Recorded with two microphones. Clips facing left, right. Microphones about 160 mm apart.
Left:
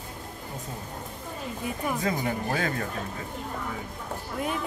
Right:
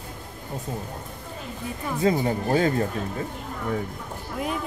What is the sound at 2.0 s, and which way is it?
Speech, 30° right (ahead or behind).